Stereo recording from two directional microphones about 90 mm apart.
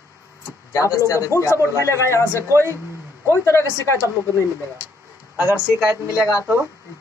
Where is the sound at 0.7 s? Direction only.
40° left (ahead or behind).